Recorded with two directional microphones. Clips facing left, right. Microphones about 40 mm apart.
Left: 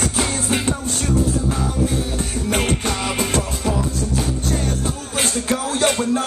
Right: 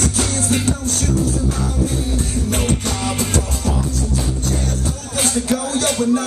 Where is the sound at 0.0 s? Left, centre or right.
Left.